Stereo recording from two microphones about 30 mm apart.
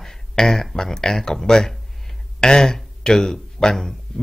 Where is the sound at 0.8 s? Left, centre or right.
Centre.